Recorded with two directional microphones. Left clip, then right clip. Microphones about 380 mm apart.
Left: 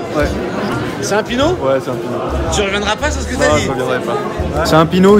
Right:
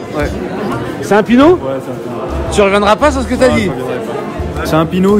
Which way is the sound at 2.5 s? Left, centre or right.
Centre.